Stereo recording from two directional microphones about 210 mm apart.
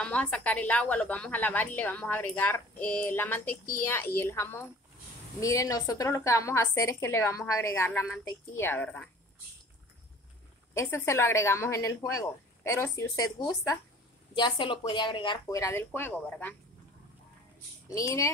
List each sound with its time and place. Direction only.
0.0 s a woman's voice: 5° left (ahead or behind)
10.7 s a woman's voice: 10° left (ahead or behind)
17.8 s a woman's voice: 15° left (ahead or behind)